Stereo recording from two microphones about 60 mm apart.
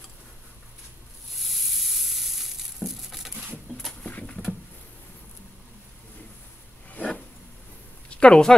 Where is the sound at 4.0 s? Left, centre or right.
Left.